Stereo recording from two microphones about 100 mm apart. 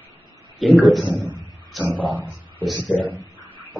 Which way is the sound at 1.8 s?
20° right (ahead or behind).